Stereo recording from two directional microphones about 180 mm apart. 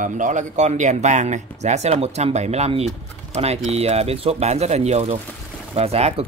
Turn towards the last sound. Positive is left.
turn(degrees=-35)  # may be behind; listen again after turning